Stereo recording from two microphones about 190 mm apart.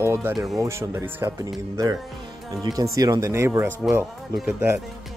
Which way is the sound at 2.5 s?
20° right (ahead or behind).